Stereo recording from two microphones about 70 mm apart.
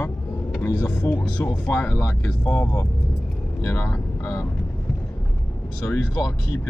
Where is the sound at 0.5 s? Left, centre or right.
Left.